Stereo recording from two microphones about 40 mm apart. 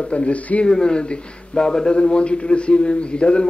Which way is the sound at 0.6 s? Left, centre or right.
Left.